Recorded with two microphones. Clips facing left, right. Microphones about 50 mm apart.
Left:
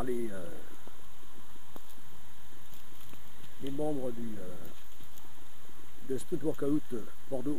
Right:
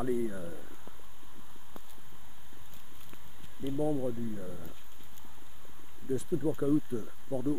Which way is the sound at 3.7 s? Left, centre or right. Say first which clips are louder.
Right 3 dB; centre.